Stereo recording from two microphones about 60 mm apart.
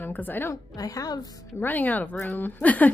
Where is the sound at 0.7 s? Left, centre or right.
Left.